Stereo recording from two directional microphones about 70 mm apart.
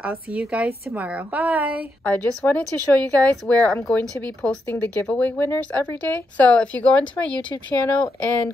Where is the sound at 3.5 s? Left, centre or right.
Left.